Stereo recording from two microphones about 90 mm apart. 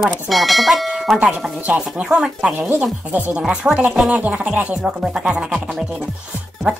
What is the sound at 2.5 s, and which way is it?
Speech, 20° right (ahead or behind).